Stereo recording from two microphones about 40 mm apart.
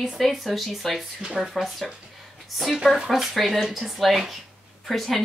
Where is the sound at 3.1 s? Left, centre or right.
Centre.